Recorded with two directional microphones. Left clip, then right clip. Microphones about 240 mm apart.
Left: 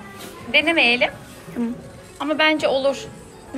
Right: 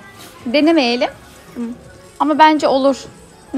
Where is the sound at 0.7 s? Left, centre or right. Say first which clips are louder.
Right 4 dB; centre.